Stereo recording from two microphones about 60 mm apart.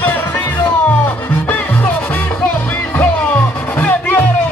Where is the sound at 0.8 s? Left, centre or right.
Left.